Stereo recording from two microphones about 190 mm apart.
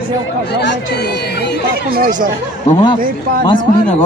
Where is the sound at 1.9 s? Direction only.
45° right (ahead or behind).